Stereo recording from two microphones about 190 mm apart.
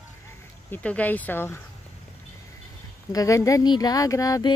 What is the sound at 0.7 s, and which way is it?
Speech, 10° left (ahead or behind).